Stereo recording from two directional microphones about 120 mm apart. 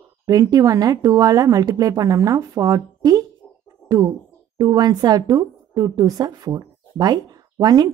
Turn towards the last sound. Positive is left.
turn(degrees=-35)  # may be behind; listen again after turning